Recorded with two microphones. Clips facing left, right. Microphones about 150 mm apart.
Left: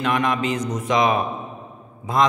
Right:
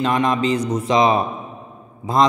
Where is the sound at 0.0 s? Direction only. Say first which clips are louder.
Right 3 dB; 30° right (ahead or behind).